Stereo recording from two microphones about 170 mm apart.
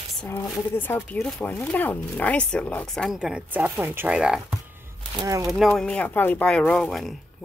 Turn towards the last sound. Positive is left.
turn(degrees=0)  # may be behind; listen again after turning